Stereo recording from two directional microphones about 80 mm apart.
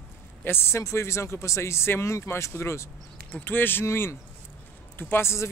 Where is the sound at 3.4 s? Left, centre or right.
Left.